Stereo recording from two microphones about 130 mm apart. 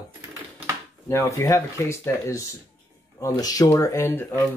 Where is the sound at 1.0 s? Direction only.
20° left (ahead or behind).